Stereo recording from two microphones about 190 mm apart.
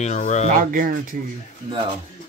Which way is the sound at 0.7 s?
45° right (ahead or behind).